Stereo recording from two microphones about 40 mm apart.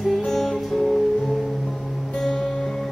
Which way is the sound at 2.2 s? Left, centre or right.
Centre.